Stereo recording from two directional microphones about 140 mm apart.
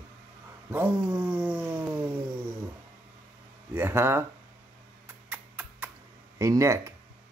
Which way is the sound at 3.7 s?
15° right (ahead or behind).